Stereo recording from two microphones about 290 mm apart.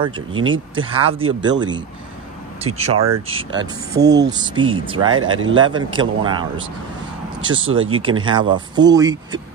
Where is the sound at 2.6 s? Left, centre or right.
Right.